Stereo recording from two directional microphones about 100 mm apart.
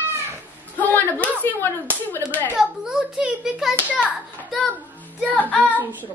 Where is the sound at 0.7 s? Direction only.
15° left (ahead or behind).